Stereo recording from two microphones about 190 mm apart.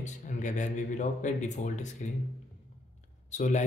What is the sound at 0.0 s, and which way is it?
Speech, 40° left (ahead or behind).